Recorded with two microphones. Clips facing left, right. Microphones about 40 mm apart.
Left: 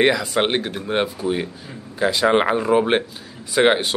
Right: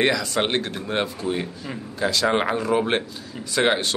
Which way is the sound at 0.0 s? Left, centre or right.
Centre.